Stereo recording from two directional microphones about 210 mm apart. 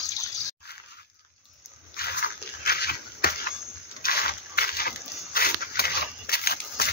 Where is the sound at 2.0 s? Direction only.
45° left (ahead or behind).